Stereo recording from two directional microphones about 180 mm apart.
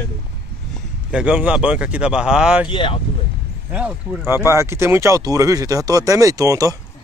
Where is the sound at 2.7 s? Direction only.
30° left (ahead or behind).